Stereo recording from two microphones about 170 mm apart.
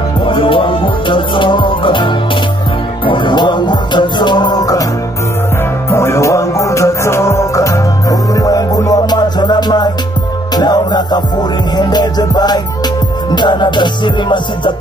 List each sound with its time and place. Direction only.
0.2 s music: 30° left (ahead or behind)
5.9 s music: 15° left (ahead or behind)